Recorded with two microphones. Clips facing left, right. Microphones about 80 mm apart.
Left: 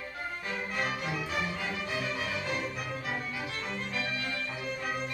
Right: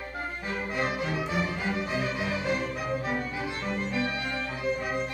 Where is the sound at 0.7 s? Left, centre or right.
Right.